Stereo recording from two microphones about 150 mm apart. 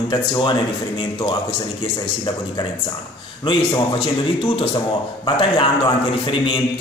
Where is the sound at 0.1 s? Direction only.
30° left (ahead or behind).